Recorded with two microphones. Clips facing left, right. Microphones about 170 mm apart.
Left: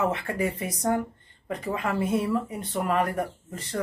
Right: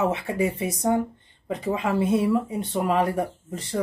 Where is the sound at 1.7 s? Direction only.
15° right (ahead or behind).